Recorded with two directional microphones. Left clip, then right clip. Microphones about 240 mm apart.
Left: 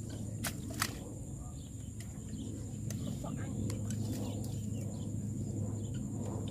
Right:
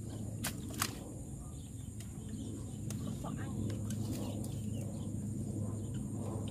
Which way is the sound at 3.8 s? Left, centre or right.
Centre.